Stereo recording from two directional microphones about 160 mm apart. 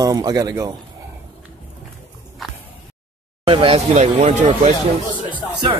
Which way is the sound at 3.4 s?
35° right (ahead or behind).